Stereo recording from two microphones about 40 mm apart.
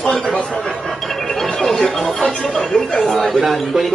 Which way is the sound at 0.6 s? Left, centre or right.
Centre.